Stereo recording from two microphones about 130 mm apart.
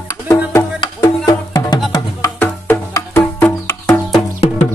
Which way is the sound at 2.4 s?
15° left (ahead or behind).